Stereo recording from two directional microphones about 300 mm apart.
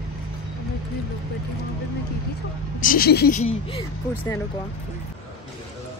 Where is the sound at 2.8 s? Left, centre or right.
Left.